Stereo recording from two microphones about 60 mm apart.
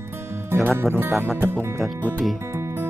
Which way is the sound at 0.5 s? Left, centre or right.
Right.